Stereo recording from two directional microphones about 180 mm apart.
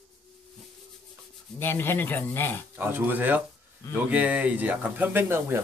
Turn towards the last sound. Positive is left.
turn(degrees=-15)  # may be behind; listen again after turning